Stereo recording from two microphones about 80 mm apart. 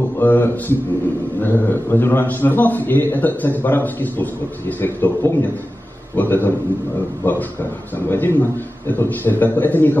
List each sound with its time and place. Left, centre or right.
0.2 s a man's voice: left